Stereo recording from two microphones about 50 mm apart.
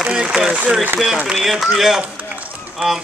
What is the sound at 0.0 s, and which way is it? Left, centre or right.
Speech, centre.